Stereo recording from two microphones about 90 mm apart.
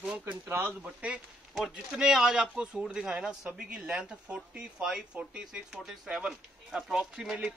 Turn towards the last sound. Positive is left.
turn(degrees=-10)  # may be behind; listen again after turning